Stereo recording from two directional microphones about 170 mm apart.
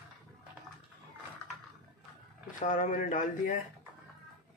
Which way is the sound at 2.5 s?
50° left (ahead or behind).